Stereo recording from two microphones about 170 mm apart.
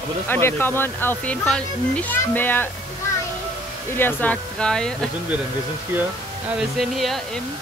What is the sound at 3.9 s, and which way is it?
Speech, 10° left (ahead or behind).